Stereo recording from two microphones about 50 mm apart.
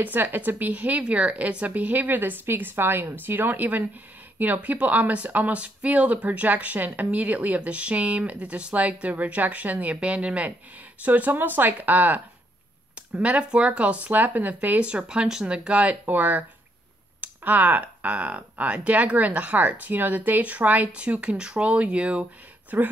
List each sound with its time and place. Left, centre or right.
0.0 s speech: right
13.2 s speech: right
14.9 s speech: right
22.7 s speech: right